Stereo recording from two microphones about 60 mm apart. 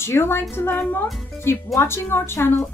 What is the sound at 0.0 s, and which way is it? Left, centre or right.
A woman's voice, left.